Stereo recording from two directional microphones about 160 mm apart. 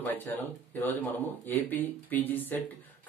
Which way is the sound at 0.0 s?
10° left (ahead or behind).